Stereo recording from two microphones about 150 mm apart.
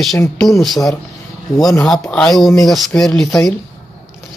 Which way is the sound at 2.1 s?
5° left (ahead or behind).